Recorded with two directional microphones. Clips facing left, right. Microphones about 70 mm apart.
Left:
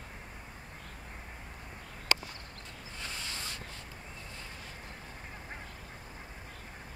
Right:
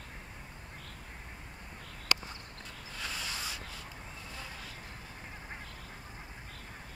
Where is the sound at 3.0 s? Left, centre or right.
Centre.